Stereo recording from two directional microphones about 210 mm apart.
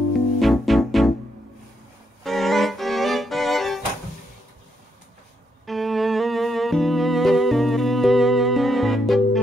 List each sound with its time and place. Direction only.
0.4 s music: centre (ahead or behind)
2.2 s music: centre (ahead or behind)
5.7 s music: centre (ahead or behind)